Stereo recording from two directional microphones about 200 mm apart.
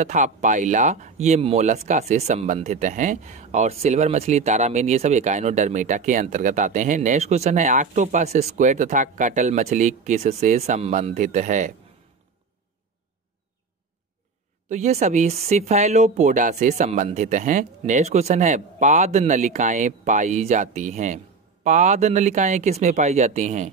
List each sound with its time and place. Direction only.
0.0 s speech: 35° right (ahead or behind)
14.7 s speech: 35° right (ahead or behind)